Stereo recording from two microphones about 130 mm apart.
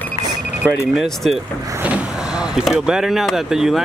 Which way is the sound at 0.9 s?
Centre (ahead or behind).